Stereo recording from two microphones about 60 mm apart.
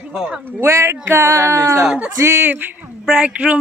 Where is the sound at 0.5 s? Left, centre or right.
Right.